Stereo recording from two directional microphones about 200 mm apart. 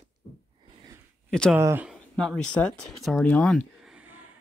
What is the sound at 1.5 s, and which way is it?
Speech, 10° right (ahead or behind).